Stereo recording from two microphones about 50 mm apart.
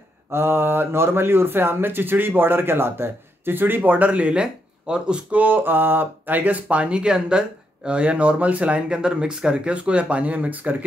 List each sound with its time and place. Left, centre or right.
0.3 s speech: right; by 5.2 s centre
5.3 s speech: right